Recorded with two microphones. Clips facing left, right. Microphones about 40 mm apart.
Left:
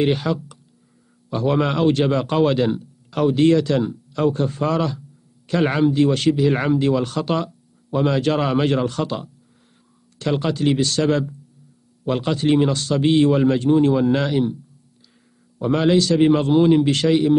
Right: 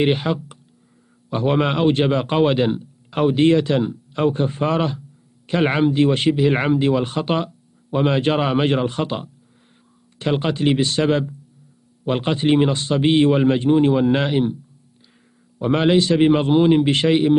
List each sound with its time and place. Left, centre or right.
0.0 s speech: right
15.6 s speech: right